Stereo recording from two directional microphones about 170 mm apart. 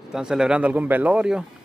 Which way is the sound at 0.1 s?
5° right (ahead or behind).